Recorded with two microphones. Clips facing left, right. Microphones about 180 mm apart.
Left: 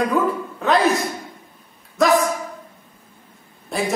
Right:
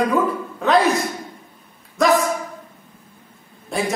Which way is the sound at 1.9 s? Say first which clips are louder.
Even; centre (ahead or behind).